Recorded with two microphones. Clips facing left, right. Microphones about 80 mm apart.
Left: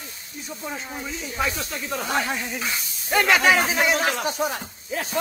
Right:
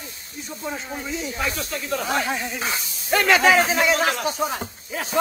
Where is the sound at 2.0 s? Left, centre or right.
Centre.